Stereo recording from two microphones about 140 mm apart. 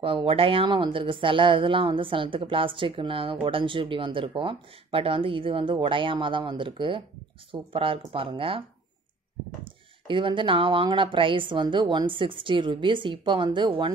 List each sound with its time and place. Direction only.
0.0 s speech: 40° right (ahead or behind)
9.7 s speech: 35° right (ahead or behind)